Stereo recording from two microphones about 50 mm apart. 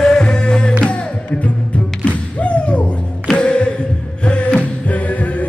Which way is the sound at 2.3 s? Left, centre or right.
Left.